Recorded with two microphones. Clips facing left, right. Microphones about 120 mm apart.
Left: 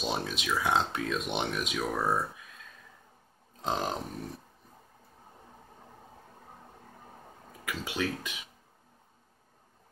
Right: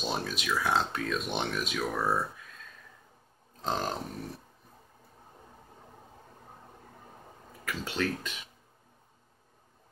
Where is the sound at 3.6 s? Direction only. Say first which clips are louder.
Even; 15° left (ahead or behind).